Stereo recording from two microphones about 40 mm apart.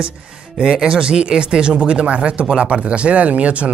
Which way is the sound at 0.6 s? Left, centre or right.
Centre.